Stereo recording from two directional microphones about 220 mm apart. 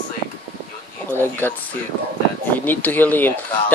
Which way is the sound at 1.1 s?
10° left (ahead or behind).